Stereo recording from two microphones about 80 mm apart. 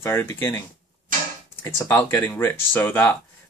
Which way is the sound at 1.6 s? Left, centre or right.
Left.